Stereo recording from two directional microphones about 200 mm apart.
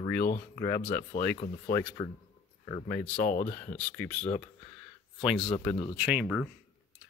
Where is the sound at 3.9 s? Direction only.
5° left (ahead or behind).